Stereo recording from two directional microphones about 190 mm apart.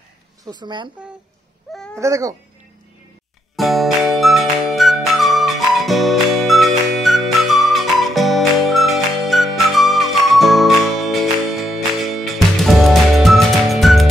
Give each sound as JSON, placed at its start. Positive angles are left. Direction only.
{"t": 0.5, "sound": "speech", "side_deg": -20}
{"t": 2.0, "sound": "speech", "side_deg": -15}
{"t": 3.5, "sound": "music", "side_deg": 0}